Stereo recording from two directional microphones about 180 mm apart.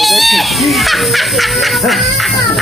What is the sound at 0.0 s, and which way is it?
Fowl, centre (ahead or behind).